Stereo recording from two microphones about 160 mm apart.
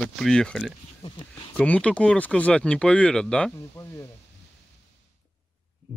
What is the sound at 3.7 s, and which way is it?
Speech, 15° left (ahead or behind).